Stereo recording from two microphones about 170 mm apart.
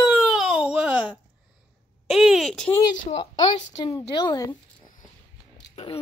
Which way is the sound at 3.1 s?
40° left (ahead or behind).